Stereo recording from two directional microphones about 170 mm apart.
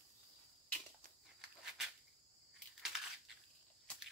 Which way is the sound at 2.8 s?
Centre (ahead or behind).